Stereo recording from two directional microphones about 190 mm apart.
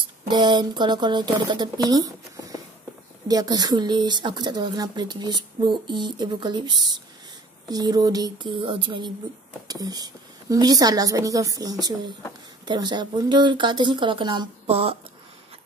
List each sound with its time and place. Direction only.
0.3 s speech: 25° right (ahead or behind)